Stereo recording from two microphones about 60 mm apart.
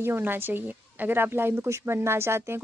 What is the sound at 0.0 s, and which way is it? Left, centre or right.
A woman's voice, right.